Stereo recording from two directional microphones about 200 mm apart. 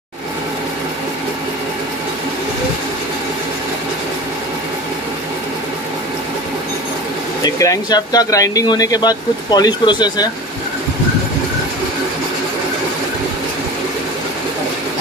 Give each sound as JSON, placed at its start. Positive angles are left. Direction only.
{"t": 7.4, "sound": "speech", "side_deg": 15}